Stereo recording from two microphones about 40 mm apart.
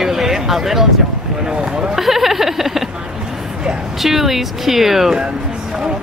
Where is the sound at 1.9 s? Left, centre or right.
Centre.